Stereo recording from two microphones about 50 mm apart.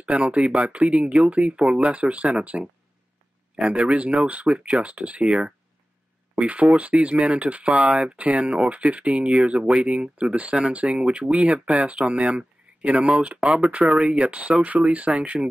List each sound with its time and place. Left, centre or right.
0.0 s speech: right
3.6 s speech: right